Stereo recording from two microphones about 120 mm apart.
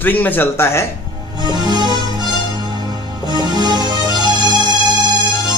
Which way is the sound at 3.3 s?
35° right (ahead or behind).